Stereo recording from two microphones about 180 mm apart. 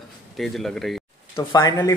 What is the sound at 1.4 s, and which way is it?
Speech, 20° left (ahead or behind).